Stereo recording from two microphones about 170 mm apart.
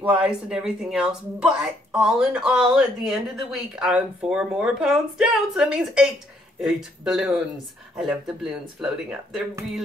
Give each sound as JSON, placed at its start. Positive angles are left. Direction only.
{"t": 0.0, "sound": "speech", "side_deg": -10}